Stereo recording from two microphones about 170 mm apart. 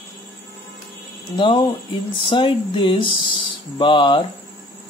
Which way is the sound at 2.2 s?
30° left (ahead or behind).